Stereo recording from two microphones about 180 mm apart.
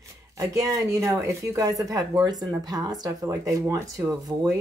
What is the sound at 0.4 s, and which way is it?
Speech, 15° right (ahead or behind).